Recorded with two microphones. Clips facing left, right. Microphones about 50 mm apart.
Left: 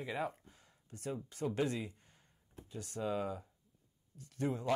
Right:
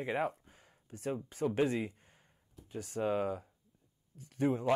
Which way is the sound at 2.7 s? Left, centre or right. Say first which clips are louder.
Right 5 dB; centre.